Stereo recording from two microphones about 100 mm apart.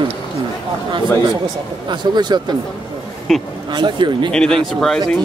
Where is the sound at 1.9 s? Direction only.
50° right (ahead or behind).